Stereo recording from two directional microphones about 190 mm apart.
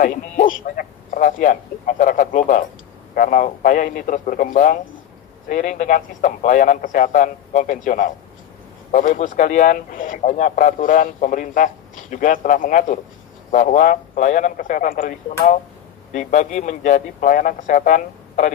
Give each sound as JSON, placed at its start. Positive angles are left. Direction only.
{"t": 0.0, "sound": "speech", "side_deg": 45}